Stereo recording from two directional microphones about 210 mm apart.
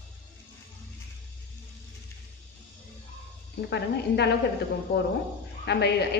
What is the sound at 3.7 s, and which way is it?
Speech, 55° left (ahead or behind).